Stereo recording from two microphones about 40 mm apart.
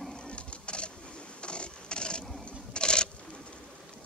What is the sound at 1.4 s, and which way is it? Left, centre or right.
Printer, left.